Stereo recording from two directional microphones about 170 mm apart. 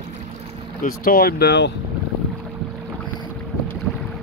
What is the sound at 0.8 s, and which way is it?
Speech, 55° left (ahead or behind).